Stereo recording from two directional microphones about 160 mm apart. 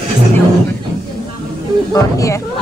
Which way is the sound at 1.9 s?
20° left (ahead or behind).